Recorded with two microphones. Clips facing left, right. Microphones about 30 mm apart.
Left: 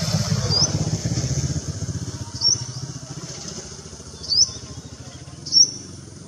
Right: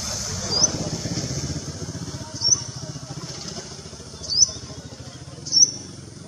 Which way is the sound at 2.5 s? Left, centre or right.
Centre.